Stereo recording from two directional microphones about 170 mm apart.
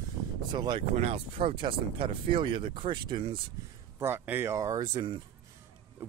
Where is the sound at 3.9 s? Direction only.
15° right (ahead or behind).